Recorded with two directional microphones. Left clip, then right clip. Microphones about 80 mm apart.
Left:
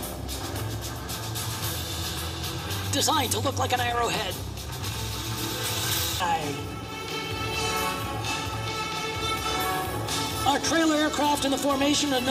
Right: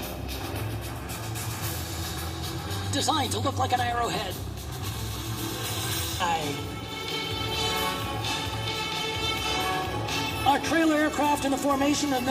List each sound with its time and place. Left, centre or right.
2.9 s speech: left
5.8 s music: left
6.2 s music: centre